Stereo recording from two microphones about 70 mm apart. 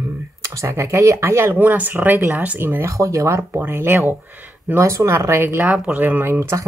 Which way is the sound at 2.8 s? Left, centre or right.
Right.